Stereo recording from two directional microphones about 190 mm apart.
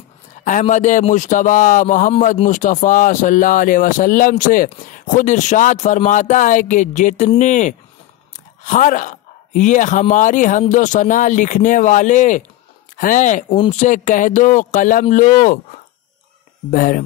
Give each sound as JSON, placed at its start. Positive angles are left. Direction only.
{"t": 0.4, "sound": "speech", "side_deg": 40}
{"t": 16.7, "sound": "speech", "side_deg": 45}